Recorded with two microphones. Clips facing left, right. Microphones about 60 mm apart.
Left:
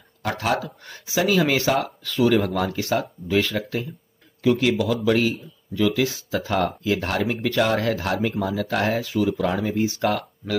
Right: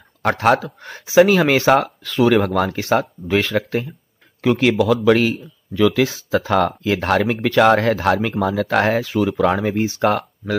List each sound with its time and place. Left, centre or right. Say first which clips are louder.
0.2 s speech: right 8 dB; right
4.4 s speech: right 4 dB; right